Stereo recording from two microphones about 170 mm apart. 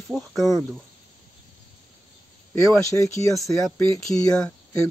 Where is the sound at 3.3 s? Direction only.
Centre (ahead or behind).